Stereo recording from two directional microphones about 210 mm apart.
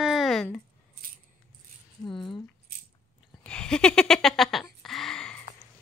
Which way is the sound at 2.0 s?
25° left (ahead or behind).